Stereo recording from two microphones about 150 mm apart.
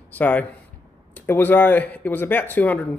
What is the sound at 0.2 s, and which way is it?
Speech, 10° left (ahead or behind).